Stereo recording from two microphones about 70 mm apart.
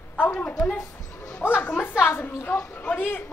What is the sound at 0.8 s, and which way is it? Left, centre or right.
Dog, left.